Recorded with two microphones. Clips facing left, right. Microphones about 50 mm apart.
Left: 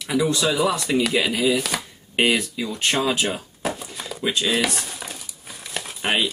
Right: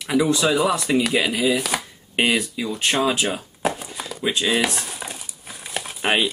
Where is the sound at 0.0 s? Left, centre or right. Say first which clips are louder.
Right 2 dB; centre.